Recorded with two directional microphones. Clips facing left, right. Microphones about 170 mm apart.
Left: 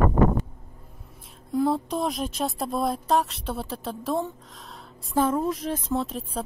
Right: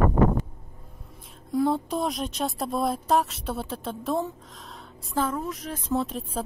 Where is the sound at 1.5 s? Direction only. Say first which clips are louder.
Even; centre (ahead or behind).